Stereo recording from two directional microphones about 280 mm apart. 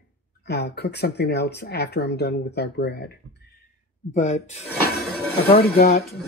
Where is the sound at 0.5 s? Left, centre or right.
Left.